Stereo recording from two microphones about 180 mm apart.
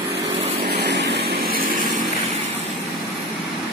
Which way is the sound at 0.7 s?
70° right (ahead or behind).